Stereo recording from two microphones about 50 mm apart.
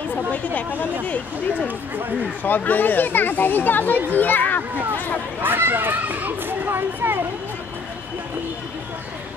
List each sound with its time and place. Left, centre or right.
2.4 s speech: left
5.4 s a child's voice: right